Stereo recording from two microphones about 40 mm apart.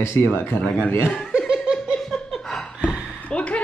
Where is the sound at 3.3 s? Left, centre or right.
Left.